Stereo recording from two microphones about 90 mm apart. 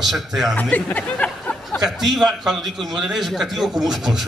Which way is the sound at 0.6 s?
20° left (ahead or behind).